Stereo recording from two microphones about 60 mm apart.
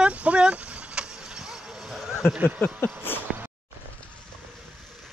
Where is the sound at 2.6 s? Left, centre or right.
Left.